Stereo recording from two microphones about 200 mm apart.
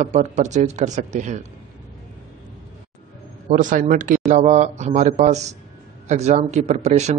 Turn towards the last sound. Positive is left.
turn(degrees=-35)  # may be behind; listen again after turning